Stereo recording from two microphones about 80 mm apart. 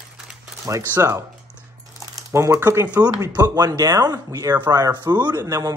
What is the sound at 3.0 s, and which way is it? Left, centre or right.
Speech, right.